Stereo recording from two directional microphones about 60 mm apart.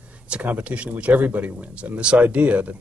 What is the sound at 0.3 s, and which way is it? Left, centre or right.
A man's voice, right.